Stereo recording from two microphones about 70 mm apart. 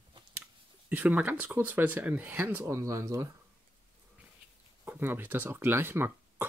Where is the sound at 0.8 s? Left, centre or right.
Right.